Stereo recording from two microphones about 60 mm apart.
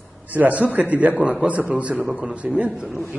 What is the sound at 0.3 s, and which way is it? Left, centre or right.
A man's voice, right.